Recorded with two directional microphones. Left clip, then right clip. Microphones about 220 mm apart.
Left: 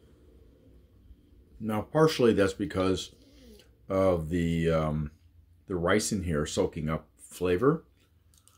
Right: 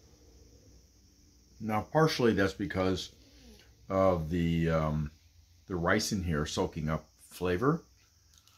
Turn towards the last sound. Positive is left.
turn(degrees=0)  # may be behind; listen again after turning